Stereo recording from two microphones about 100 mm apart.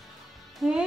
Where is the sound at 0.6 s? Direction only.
10° right (ahead or behind).